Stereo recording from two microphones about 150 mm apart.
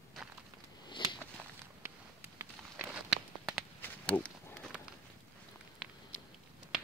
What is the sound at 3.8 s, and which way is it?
Pig, 10° left (ahead or behind).